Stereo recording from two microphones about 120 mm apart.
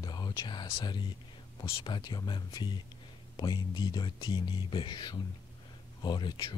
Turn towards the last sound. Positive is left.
turn(degrees=35)  # may be behind; listen again after turning